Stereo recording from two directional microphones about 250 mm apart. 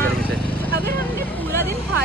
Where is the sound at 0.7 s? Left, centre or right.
Right.